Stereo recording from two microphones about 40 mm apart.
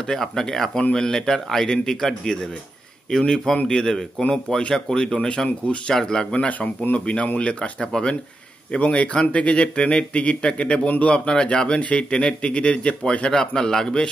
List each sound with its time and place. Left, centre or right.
0.0 s a man's voice: centre
6.3 s a man's voice: left
8.7 s a man's voice: left
11.1 s a man's voice: left